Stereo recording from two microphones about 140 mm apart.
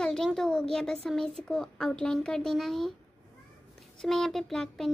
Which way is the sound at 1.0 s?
5° left (ahead or behind).